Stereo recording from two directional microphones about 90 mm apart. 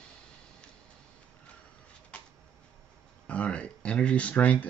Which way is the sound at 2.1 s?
10° left (ahead or behind).